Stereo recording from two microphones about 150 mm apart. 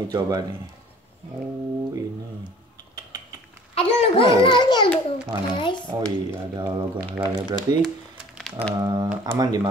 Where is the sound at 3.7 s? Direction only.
40° left (ahead or behind).